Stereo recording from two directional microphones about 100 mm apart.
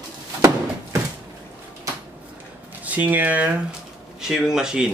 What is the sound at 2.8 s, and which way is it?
Speech, 15° right (ahead or behind).